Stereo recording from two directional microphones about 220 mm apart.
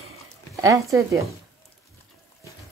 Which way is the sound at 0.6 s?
15° right (ahead or behind).